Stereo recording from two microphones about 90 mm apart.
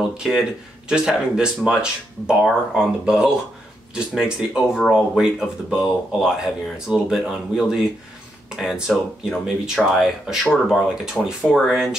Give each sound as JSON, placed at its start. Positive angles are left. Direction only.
{"t": 0.2, "sound": "speech", "side_deg": -5}